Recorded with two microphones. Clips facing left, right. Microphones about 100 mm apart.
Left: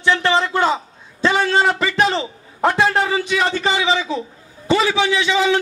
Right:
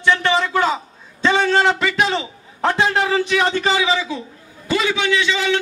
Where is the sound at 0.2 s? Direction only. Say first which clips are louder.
Left 1 dB; 30° left (ahead or behind).